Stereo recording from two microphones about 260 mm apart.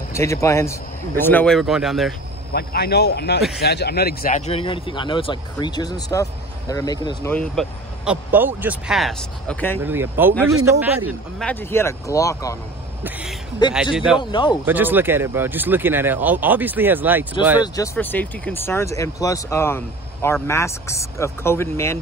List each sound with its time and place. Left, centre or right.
0.1 s speech: centre
2.5 s speech: left; by 9.8 s centre
9.8 s speech: centre
11.3 s speech: centre
13.6 s speech: centre
13.9 s speech: centre
14.3 s speech: centre
14.7 s speech: centre
17.7 s speech: centre